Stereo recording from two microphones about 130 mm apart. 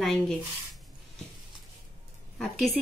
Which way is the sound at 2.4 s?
Centre (ahead or behind).